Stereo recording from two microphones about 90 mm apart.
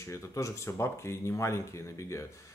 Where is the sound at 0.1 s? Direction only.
30° left (ahead or behind).